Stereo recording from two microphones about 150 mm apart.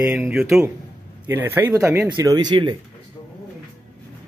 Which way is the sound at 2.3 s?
30° right (ahead or behind).